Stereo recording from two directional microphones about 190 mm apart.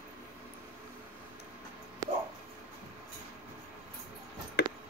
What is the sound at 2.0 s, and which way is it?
Dog, 15° right (ahead or behind).